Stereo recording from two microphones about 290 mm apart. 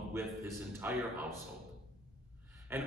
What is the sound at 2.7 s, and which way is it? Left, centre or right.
Speech, centre.